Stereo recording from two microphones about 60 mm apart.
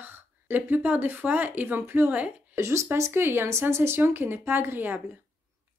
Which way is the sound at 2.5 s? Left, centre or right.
Right.